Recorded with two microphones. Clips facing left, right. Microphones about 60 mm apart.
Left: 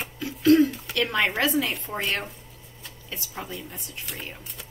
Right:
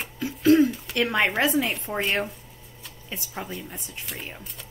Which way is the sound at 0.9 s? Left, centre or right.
Centre.